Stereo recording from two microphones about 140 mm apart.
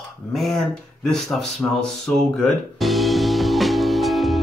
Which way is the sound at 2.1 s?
5° left (ahead or behind).